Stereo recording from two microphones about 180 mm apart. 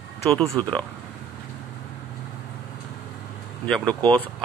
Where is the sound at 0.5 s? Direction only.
20° right (ahead or behind).